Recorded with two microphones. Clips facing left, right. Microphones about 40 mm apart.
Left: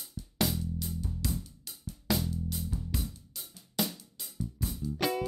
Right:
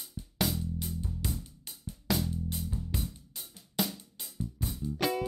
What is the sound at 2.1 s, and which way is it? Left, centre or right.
Music, centre.